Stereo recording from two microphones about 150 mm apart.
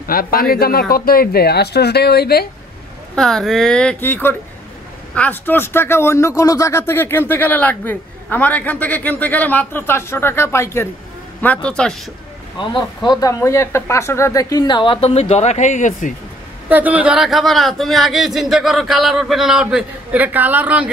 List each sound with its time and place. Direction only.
0.0 s speech: 75° left (ahead or behind)
3.2 s speech: 5° left (ahead or behind)
12.5 s speech: 30° left (ahead or behind); by 16.2 s 60° left (ahead or behind)
16.6 s speech: 10° right (ahead or behind)